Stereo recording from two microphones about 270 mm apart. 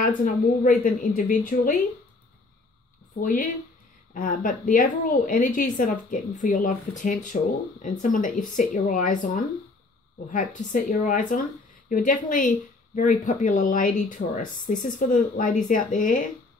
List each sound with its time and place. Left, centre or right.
0.0 s a woman's voice: left
3.2 s a woman's voice: left